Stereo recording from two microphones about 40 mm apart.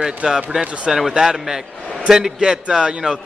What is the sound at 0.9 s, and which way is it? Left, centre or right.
A man's voice, centre.